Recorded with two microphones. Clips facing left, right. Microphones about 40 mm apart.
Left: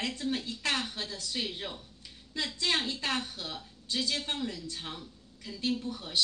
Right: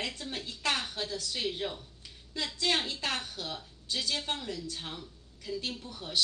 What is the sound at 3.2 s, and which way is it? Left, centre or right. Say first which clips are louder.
A woman's voice: right 1 dB; left.